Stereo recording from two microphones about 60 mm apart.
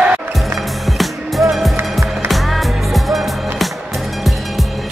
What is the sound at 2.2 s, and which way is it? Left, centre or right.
Music, centre.